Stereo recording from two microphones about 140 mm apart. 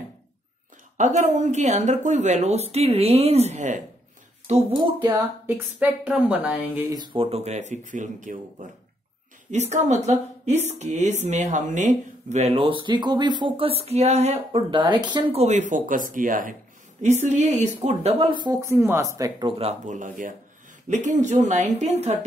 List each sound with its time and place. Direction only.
0.9 s speech: 60° right (ahead or behind)
4.7 s speech: 35° right (ahead or behind)
5.5 s a woman's voice: 10° right (ahead or behind)
6.9 s speech: 30° right (ahead or behind); by 14.6 s 50° right (ahead or behind)
14.7 s speech: 30° right (ahead or behind)
15.3 s speech: 50° right (ahead or behind)
15.7 s speech: 70° right (ahead or behind)
17.0 s speech: 55° right (ahead or behind); by 18.6 s 35° right (ahead or behind)
18.6 s speech: 20° right (ahead or behind)
19.6 s speech: 55° right (ahead or behind)